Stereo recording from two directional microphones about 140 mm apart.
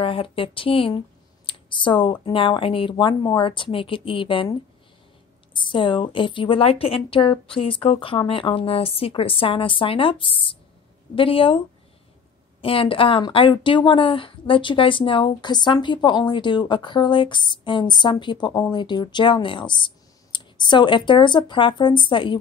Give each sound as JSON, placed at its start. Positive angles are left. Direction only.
{"t": 0.0, "sound": "a woman's voice", "side_deg": 40}
{"t": 12.6, "sound": "a woman's voice", "side_deg": 40}